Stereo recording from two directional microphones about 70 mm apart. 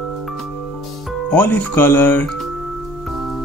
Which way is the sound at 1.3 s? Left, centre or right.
Left.